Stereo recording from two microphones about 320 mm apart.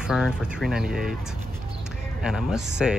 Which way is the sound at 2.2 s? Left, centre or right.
Centre.